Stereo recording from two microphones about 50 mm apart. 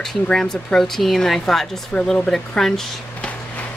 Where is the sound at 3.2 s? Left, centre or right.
Left.